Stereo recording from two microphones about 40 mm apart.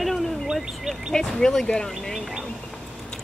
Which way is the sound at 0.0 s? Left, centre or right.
Centre.